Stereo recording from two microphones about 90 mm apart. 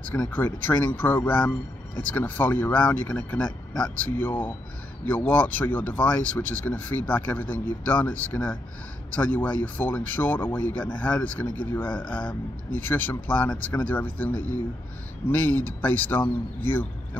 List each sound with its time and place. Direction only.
0.1 s speech: 20° left (ahead or behind)